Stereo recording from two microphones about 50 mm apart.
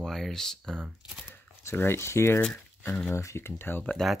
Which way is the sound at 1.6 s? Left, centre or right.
Left.